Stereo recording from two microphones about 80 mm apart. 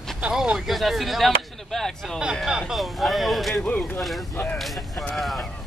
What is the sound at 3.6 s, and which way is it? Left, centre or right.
Speech, centre.